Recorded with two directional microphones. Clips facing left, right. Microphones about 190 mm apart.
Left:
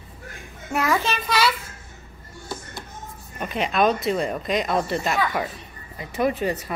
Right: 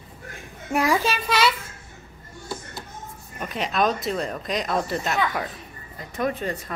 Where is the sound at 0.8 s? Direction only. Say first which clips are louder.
Right 1 dB; 10° right (ahead or behind).